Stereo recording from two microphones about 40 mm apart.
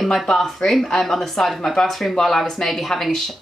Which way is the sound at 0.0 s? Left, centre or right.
Centre.